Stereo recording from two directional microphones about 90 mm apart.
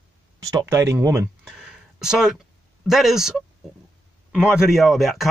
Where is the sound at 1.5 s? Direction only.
5° right (ahead or behind).